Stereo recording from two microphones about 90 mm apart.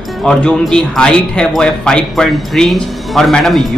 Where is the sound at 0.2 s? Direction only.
10° left (ahead or behind).